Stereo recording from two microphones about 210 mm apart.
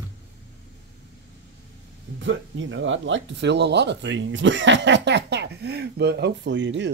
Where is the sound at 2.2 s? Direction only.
65° right (ahead or behind).